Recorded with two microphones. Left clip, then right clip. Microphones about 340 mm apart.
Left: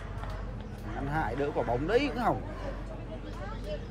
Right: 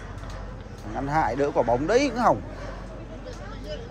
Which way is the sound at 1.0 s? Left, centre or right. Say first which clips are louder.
Right 8 dB; centre.